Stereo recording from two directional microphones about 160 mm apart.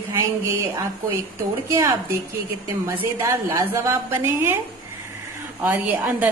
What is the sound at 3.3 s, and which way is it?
A woman's voice, 20° right (ahead or behind).